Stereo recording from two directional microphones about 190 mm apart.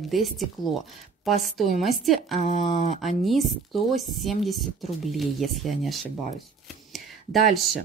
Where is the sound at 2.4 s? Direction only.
45° left (ahead or behind).